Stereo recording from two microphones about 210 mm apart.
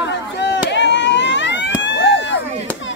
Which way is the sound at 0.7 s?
60° left (ahead or behind).